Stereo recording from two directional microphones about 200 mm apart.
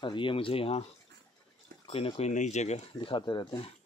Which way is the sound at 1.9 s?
30° left (ahead or behind).